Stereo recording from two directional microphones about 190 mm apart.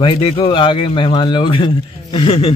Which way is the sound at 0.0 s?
30° left (ahead or behind).